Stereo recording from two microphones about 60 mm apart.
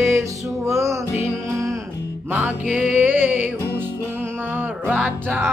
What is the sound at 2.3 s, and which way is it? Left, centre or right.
Music, right.